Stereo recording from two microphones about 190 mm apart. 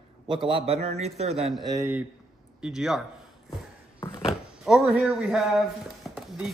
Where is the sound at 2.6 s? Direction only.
5° right (ahead or behind).